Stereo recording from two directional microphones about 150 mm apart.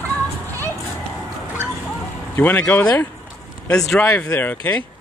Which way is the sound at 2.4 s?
10° left (ahead or behind).